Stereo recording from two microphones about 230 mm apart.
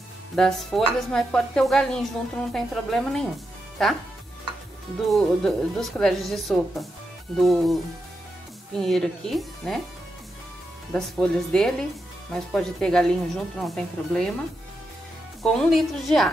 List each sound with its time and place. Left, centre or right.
0.4 s a woman's voice: centre
5.0 s a woman's voice: centre
10.9 s a woman's voice: centre
15.4 s a woman's voice: centre